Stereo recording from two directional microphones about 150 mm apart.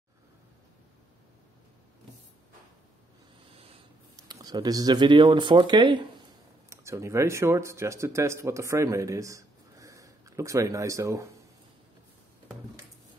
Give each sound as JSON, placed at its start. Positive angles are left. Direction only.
{"t": 4.3, "sound": "speech", "side_deg": -25}
{"t": 6.7, "sound": "speech", "side_deg": -20}